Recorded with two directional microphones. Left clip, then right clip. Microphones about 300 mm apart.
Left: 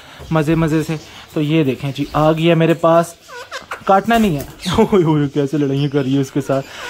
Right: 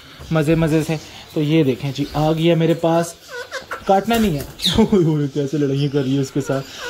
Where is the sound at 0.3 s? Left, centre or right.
Centre.